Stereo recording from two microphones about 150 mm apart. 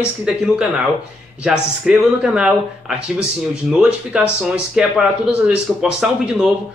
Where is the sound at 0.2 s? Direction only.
5° right (ahead or behind).